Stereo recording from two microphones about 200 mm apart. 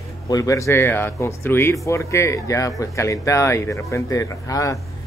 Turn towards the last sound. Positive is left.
turn(degrees=15)  # may be behind; listen again after turning